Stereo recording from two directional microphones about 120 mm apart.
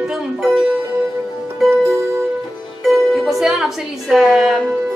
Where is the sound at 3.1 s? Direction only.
Centre (ahead or behind).